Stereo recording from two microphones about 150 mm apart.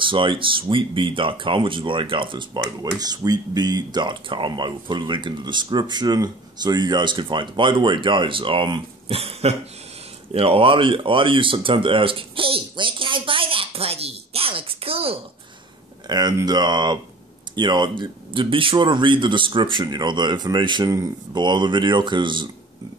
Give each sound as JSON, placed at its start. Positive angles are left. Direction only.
{"t": 0.0, "sound": "speech", "side_deg": -35}
{"t": 10.3, "sound": "a sound", "side_deg": -40}
{"t": 16.1, "sound": "speech", "side_deg": -30}